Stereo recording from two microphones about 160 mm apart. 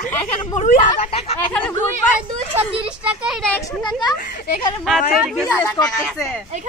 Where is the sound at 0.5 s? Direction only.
55° left (ahead or behind).